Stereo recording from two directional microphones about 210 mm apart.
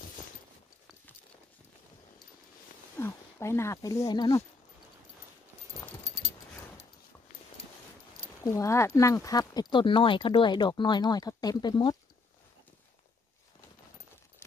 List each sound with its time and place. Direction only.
3.0 s speech: 10° left (ahead or behind)
5.8 s dog: 15° left (ahead or behind)
8.5 s speech: 15° left (ahead or behind)